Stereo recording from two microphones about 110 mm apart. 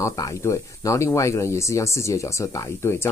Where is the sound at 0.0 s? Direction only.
30° left (ahead or behind).